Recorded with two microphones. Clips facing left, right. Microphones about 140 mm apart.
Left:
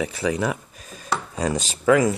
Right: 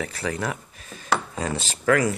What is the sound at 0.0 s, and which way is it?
Dishes, 10° left (ahead or behind).